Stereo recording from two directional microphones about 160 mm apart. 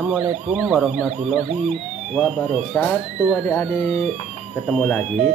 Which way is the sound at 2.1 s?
Centre (ahead or behind).